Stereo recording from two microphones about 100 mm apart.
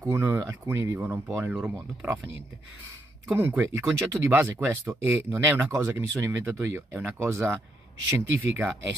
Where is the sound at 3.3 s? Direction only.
20° right (ahead or behind).